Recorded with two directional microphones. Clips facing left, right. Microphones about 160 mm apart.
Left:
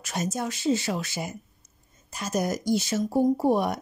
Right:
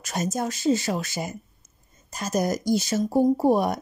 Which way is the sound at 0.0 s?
40° right (ahead or behind).